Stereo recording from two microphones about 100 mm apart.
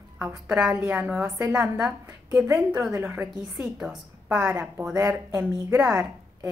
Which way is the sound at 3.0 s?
20° right (ahead or behind).